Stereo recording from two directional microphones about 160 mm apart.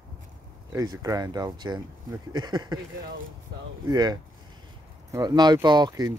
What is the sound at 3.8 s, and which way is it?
Speech, 25° right (ahead or behind).